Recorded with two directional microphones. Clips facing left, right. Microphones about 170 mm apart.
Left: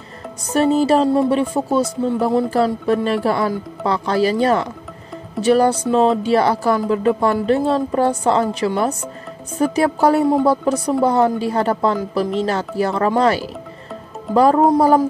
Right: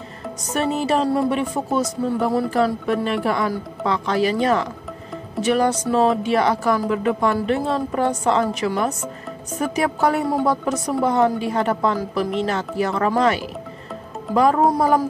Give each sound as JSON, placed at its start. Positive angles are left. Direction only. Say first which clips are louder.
{"t": 0.5, "sound": "a woman's voice", "louder": "left 6 dB", "side_deg": 35}